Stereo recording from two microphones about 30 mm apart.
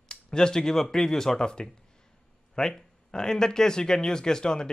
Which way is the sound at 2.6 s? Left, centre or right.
Left.